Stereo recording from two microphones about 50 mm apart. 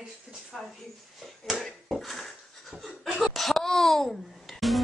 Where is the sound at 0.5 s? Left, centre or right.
Centre.